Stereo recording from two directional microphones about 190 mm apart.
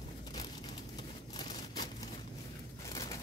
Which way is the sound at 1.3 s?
20° left (ahead or behind).